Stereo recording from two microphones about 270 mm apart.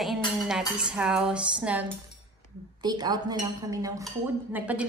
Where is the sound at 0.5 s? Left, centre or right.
Centre.